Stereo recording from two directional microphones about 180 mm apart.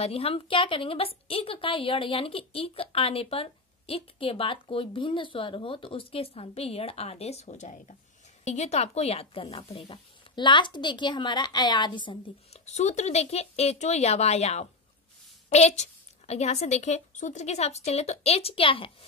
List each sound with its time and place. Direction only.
0.0 s a woman's voice: 35° left (ahead or behind)
12.6 s a woman's voice: 40° left (ahead or behind)